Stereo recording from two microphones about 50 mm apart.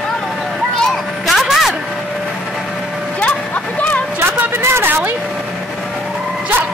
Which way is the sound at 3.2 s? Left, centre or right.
Left.